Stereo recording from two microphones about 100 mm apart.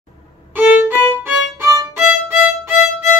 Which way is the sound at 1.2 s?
25° right (ahead or behind).